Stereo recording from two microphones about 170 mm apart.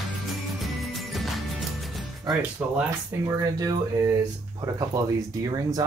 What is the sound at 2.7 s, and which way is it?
Speech, 15° right (ahead or behind).